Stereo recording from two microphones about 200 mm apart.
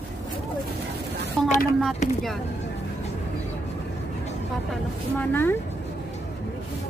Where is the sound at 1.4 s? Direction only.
5° left (ahead or behind).